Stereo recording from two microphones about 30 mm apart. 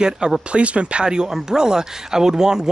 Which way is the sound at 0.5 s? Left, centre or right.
Right.